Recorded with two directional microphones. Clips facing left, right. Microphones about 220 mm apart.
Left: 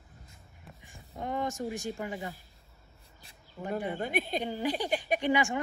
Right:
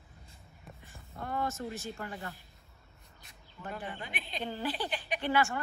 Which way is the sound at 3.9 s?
50° left (ahead or behind).